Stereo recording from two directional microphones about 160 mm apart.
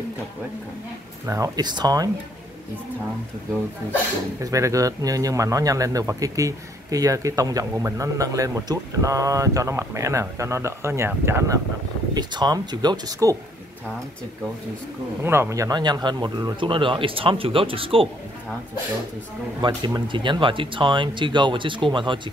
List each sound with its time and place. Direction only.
1.2 s speech: 20° right (ahead or behind)
4.4 s speech: 20° right (ahead or behind)
15.2 s speech: 15° right (ahead or behind); by 18.0 s 35° right (ahead or behind)
19.6 s speech: 30° right (ahead or behind)